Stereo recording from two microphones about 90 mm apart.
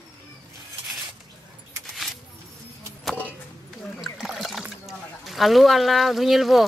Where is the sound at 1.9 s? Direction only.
Centre (ahead or behind).